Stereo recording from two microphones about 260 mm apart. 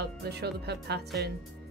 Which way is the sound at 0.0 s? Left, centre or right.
Right.